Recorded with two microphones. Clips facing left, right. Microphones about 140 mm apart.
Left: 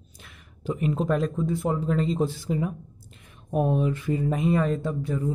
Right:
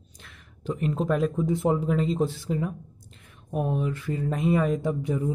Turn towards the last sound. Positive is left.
turn(degrees=-15)  # may be behind; listen again after turning